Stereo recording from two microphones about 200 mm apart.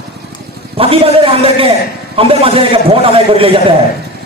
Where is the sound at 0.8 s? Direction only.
30° right (ahead or behind).